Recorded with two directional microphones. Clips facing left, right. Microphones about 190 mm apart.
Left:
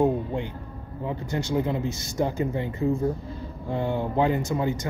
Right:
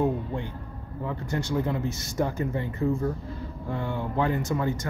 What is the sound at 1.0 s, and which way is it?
A man's voice, 20° left (ahead or behind).